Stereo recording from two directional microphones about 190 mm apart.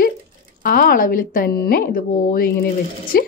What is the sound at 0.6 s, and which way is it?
A woman's voice, 50° left (ahead or behind).